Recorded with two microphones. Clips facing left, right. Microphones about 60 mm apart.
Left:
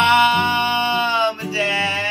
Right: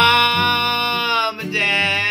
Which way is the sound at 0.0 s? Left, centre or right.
Right.